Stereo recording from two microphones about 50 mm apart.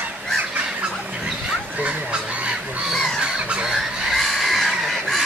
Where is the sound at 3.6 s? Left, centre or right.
Centre.